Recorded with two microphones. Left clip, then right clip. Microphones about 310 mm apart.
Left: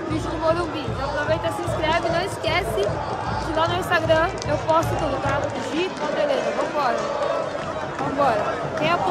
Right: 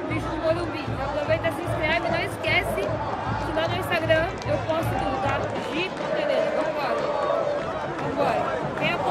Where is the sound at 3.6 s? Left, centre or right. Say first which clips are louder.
Left 5 dB; centre.